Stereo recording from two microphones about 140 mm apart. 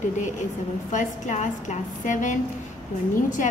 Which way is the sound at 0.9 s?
60° left (ahead or behind).